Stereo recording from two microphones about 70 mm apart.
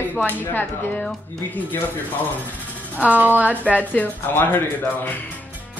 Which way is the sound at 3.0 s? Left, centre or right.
Right.